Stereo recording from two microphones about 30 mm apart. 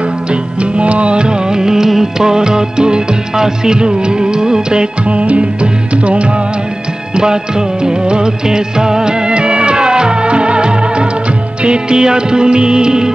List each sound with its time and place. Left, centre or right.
0.3 s music: right
1.6 s music: centre
5.1 s music: right
7.2 s music of bollywood: right
11.6 s music: right